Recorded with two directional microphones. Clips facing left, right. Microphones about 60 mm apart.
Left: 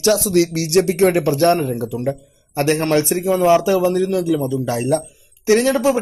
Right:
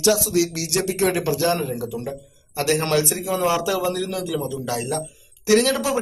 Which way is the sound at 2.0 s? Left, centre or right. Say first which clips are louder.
Left 8 dB; left.